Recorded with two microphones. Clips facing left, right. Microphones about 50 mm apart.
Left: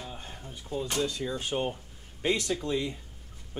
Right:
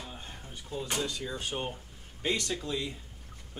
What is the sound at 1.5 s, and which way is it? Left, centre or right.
A man's voice, left.